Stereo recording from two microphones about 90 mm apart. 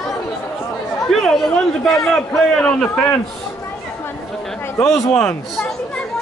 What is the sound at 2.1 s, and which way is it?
Speech, 10° left (ahead or behind).